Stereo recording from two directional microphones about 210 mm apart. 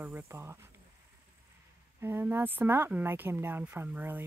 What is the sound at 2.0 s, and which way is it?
Speech, 10° right (ahead or behind).